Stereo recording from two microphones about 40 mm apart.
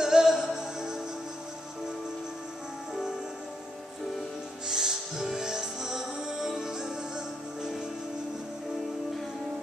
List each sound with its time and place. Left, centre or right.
0.0 s music: centre
4.6 s music: centre